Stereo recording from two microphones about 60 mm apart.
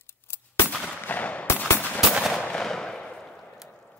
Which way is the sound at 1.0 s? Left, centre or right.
Left.